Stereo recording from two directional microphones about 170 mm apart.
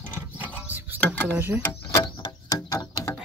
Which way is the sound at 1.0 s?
10° left (ahead or behind).